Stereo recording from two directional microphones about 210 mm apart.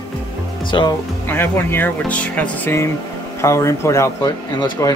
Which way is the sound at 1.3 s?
10° left (ahead or behind).